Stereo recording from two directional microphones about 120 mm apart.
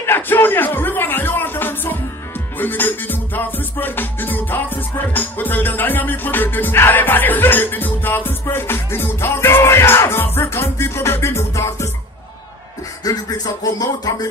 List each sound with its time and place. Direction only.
0.0 s music: 20° left (ahead or behind)
13.0 s speech: 30° left (ahead or behind)